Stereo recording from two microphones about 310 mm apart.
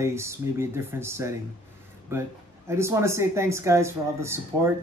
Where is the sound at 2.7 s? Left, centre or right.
Centre.